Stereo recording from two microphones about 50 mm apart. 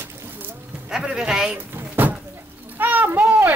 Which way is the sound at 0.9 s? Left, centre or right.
Centre.